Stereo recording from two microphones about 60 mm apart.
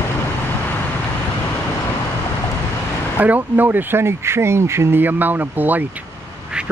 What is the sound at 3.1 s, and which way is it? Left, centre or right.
Speech, right.